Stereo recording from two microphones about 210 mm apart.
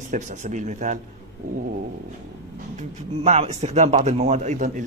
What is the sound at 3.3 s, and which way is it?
Speech, 35° right (ahead or behind).